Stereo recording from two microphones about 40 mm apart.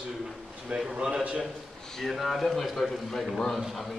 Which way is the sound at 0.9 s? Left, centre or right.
Right.